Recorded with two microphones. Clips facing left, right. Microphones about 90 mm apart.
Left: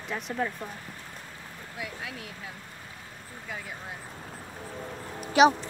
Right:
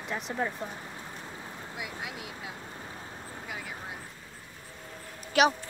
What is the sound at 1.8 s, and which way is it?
Speech, 15° right (ahead or behind).